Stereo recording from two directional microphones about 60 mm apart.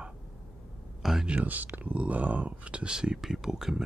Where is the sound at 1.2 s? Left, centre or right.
Right.